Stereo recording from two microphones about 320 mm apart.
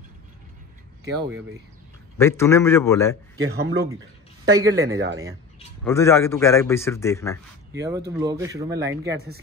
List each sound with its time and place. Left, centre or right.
2.1 s a man's voice: centre
3.4 s speech: right
4.5 s speech: centre
5.9 s a man's voice: centre
7.7 s speech: centre